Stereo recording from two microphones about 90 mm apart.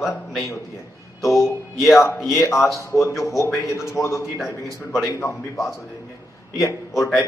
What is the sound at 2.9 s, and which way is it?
A man's voice, 35° left (ahead or behind).